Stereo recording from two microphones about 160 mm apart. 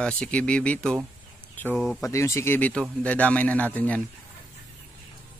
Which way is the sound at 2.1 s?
20° left (ahead or behind).